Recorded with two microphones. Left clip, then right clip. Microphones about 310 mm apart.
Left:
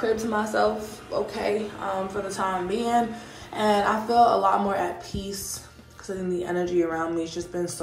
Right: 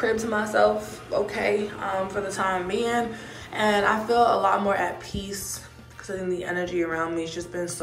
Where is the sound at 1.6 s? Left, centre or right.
Left.